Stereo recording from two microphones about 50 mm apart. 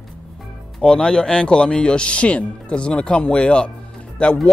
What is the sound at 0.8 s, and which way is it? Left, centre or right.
Speech, centre.